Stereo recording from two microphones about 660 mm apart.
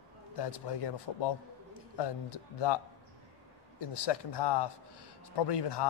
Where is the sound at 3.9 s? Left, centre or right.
Left.